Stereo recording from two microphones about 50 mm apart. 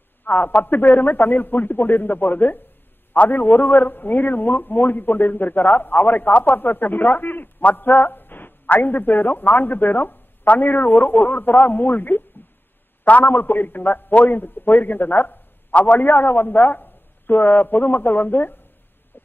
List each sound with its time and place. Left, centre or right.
0.2 s a man's voice: left